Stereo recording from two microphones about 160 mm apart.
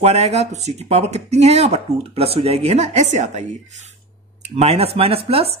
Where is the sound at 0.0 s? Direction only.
40° right (ahead or behind).